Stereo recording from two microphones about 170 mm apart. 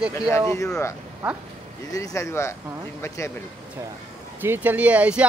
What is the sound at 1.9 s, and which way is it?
Speech, 20° left (ahead or behind).